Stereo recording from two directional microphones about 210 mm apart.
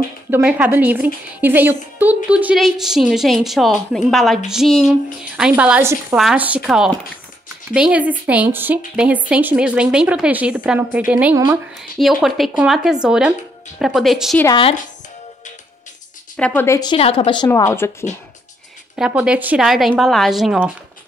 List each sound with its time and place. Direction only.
0.3 s a woman's voice: 5° right (ahead or behind)
14.4 s a woman's voice: 25° left (ahead or behind)
16.3 s a woman's voice: 5° left (ahead or behind); by 17.5 s 25° left (ahead or behind)
17.5 s speech: 15° left (ahead or behind)
18.9 s a woman's voice: 5° right (ahead or behind)